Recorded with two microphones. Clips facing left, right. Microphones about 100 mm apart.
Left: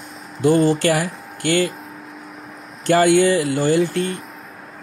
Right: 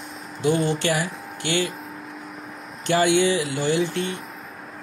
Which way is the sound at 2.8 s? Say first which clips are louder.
Left 5 dB; 45° left (ahead or behind).